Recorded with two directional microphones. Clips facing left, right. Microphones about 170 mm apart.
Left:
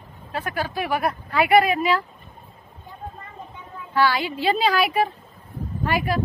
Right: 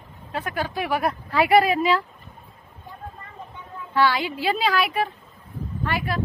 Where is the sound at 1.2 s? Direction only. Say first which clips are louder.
Even; 30° right (ahead or behind).